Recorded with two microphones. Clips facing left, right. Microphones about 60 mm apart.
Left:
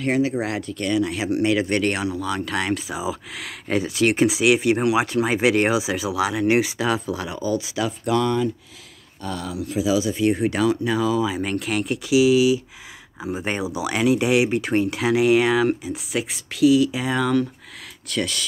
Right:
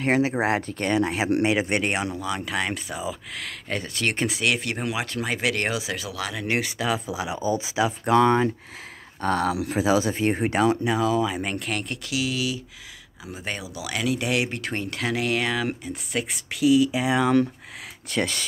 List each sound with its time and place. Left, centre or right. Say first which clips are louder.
0.0 s speech: even; right
1.4 s speech: left 3 dB; right
2.1 s speech: left 3 dB; centre
7.1 s speech: left 1 dB; centre; by 8.4 s right
9.2 s speech: right 5 dB; right
11.0 s speech: left 2 dB; centre
13.2 s speech: left 8 dB; left; by 17.3 s centre
18.0 s speech: even; right